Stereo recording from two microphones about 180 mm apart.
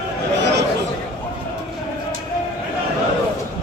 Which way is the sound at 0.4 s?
75° right (ahead or behind).